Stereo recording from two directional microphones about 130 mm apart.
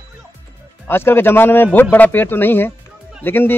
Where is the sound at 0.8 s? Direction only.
20° left (ahead or behind).